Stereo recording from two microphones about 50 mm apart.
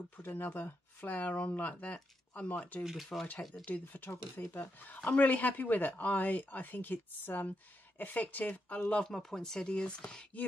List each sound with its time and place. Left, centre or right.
0.2 s speech: left
1.1 s speech: left
2.8 s speech: centre
3.8 s speech: left
9.0 s speech: centre